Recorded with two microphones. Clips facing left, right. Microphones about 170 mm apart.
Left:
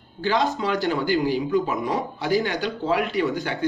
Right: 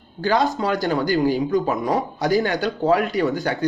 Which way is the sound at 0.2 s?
40° right (ahead or behind).